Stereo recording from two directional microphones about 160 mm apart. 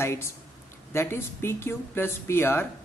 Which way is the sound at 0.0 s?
15° left (ahead or behind).